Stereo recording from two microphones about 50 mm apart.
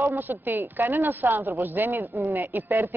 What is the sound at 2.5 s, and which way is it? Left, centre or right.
Speech, right.